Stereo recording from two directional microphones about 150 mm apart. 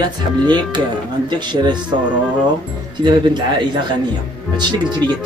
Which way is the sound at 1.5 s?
30° right (ahead or behind).